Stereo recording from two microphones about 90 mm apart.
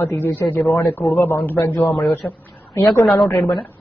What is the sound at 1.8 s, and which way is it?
A man's voice, centre (ahead or behind).